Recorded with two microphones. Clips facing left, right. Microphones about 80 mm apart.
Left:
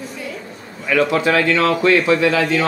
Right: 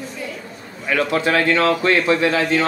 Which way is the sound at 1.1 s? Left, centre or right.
Right.